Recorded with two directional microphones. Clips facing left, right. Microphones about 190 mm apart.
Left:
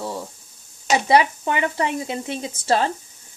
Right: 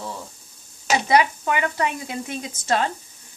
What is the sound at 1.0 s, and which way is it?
Speech, 30° left (ahead or behind).